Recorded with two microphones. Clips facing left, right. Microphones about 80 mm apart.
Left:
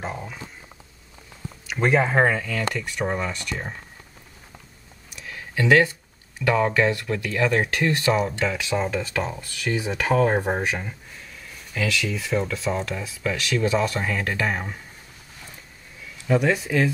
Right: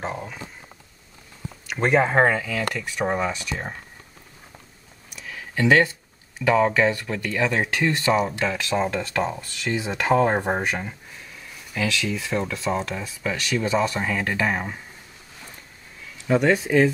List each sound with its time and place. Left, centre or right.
0.0 s speech: centre
1.7 s speech: centre
5.1 s a sound: centre
6.4 s speech: centre
16.3 s speech: centre
16.6 s speech: right